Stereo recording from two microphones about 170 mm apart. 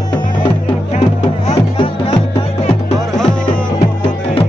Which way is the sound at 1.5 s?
35° left (ahead or behind).